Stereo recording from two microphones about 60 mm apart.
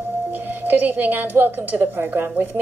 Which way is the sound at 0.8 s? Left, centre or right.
Right.